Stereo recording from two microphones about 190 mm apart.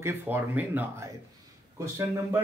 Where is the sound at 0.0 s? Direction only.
10° right (ahead or behind).